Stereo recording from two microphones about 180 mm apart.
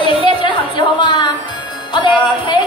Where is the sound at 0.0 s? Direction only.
25° left (ahead or behind).